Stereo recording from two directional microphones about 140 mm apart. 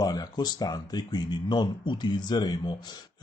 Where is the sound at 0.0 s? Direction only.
30° left (ahead or behind).